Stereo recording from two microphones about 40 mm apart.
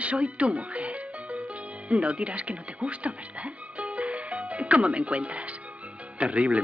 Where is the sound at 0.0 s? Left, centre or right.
Right.